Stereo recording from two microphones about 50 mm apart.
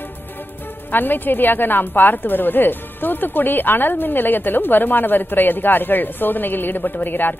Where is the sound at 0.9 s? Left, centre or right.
Left.